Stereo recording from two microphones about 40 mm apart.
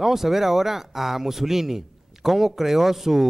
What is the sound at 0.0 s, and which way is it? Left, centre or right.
Speech, centre.